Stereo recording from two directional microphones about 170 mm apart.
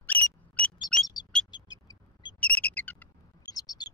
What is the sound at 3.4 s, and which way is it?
Chirp, 20° left (ahead or behind).